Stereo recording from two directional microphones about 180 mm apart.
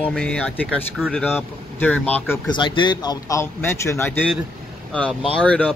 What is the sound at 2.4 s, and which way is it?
Speech, 25° left (ahead or behind).